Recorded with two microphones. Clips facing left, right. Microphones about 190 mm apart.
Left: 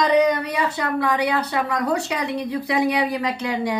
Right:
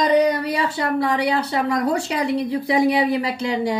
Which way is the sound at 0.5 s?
30° right (ahead or behind).